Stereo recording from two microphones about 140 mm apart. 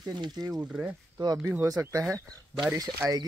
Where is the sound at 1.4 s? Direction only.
20° right (ahead or behind).